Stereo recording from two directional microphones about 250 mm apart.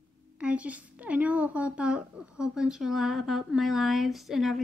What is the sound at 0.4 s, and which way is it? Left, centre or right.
Speech, centre.